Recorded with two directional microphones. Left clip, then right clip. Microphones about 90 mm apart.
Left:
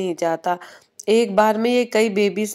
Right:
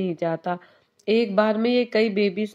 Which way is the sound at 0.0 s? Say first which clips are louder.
Left 4 dB; 35° left (ahead or behind).